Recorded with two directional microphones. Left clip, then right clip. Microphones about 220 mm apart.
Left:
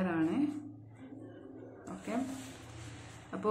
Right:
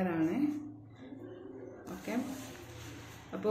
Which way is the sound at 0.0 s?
20° left (ahead or behind).